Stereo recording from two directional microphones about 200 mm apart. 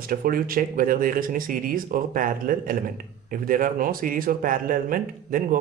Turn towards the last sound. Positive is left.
turn(degrees=-45)  # may be behind; listen again after turning